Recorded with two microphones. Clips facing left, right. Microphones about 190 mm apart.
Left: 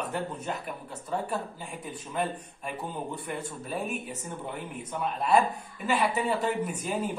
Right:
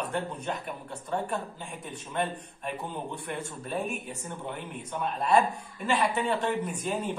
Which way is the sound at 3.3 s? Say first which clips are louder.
Even; 5° left (ahead or behind).